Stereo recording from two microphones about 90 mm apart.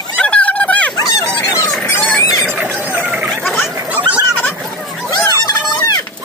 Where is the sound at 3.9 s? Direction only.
15° right (ahead or behind).